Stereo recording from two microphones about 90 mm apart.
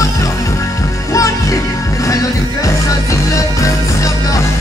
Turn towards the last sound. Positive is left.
turn(degrees=35)  # may be behind; listen again after turning